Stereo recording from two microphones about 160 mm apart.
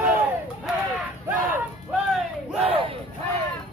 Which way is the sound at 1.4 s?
5° right (ahead or behind).